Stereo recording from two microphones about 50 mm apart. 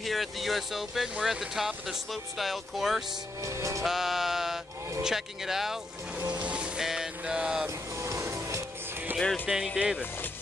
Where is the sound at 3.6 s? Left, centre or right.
Right.